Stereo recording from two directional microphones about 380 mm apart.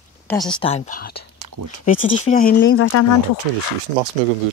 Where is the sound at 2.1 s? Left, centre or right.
Centre; by 3.1 s left.